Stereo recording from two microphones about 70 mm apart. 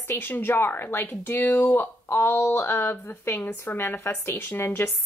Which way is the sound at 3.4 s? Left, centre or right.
Left.